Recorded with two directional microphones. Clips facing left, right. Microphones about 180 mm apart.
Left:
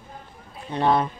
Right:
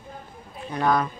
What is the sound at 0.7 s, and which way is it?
Speech, 30° left (ahead or behind).